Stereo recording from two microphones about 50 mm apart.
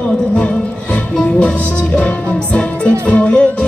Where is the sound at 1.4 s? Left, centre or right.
Left.